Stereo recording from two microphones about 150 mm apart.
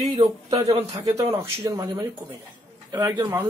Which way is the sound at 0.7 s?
25° right (ahead or behind).